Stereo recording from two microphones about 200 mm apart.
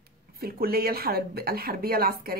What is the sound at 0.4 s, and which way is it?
Speech, 50° right (ahead or behind).